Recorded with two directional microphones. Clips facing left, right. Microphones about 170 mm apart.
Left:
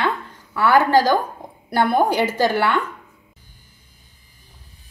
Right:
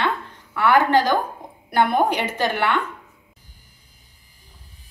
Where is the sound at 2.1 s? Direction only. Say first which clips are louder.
Left 4 dB; 35° left (ahead or behind).